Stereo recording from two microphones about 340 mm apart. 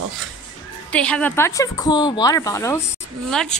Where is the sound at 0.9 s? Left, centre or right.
Centre.